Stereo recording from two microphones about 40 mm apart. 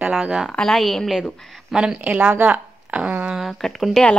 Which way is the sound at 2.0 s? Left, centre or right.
Right.